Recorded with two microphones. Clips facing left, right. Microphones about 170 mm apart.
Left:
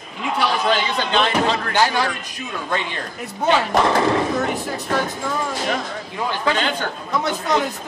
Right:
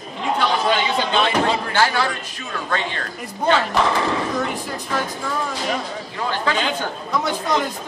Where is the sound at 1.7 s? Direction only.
15° left (ahead or behind).